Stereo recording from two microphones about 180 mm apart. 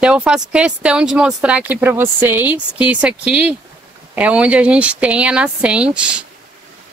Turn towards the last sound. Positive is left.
turn(degrees=-5)  # may be behind; listen again after turning